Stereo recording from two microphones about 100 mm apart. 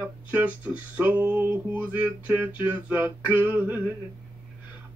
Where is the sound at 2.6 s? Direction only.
20° right (ahead or behind).